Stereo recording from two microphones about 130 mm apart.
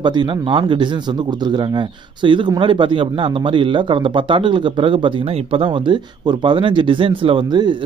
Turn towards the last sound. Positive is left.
turn(degrees=-35)  # may be behind; listen again after turning